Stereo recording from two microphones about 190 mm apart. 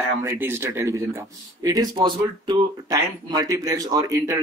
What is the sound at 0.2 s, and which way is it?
Speech, 15° right (ahead or behind).